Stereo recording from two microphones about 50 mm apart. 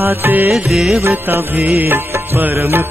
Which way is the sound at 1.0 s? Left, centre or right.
Right.